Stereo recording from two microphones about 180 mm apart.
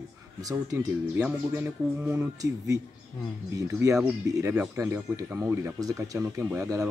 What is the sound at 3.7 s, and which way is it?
Speech, 15° right (ahead or behind).